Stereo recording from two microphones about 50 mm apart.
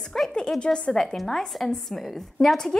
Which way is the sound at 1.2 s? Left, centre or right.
Centre.